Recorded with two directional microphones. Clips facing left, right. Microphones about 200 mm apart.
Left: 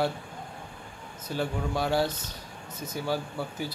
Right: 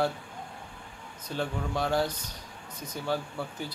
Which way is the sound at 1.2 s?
5° left (ahead or behind).